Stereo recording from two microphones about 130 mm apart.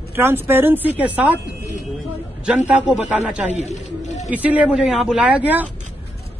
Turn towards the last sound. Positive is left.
turn(degrees=-10)  # may be behind; listen again after turning